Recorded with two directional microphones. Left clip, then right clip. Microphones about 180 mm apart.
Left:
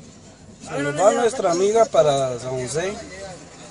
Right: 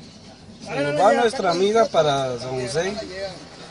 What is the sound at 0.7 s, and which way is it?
Speech, 30° left (ahead or behind).